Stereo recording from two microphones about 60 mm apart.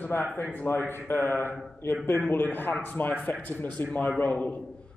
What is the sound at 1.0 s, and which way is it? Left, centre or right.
Speech, left.